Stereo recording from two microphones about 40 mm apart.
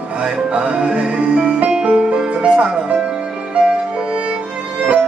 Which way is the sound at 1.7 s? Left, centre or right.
Centre.